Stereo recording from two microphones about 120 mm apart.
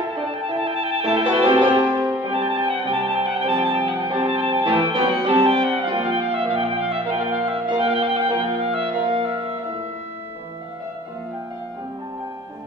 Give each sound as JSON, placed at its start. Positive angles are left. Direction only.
{"t": 0.5, "sound": "music", "side_deg": -50}
{"t": 2.2, "sound": "clarinet", "side_deg": -50}
{"t": 9.1, "sound": "music", "side_deg": -50}